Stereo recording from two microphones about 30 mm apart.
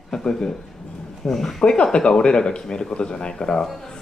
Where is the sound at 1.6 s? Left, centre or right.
Left.